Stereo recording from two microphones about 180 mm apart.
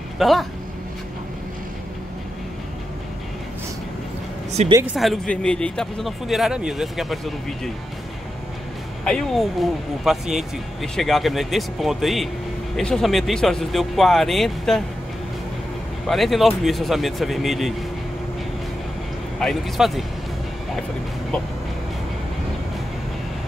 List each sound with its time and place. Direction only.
0.2 s speech: centre (ahead or behind)
4.6 s speech: 40° right (ahead or behind)
4.9 s speech: centre (ahead or behind)
9.0 s speech: 5° left (ahead or behind)
16.1 s speech: centre (ahead or behind)
19.4 s speech: centre (ahead or behind)